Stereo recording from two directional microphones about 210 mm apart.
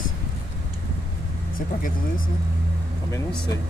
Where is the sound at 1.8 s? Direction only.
40° left (ahead or behind).